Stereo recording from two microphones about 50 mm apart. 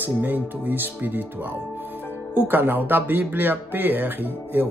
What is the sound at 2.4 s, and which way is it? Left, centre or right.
Speech, right.